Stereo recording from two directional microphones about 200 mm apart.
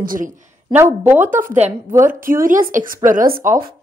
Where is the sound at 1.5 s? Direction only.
35° right (ahead or behind).